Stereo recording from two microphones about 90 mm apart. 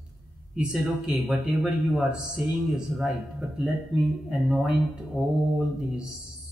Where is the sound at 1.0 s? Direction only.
5° right (ahead or behind).